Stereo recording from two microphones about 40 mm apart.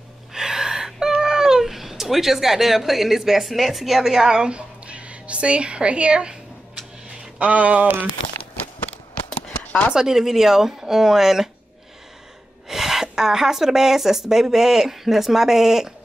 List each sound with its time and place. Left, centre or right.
0.3 s gasp: centre
1.2 s speech: centre; by 7.9 s right
9.3 s a sound: left
9.9 s a woman's voice: centre
12.6 s a woman's voice: centre